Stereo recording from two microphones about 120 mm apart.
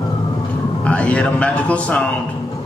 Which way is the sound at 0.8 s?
10° left (ahead or behind).